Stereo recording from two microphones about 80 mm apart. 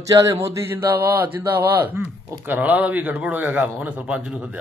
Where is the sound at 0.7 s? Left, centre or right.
Right.